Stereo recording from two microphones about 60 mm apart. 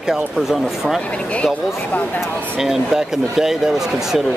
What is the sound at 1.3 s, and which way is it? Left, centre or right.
Speech, left.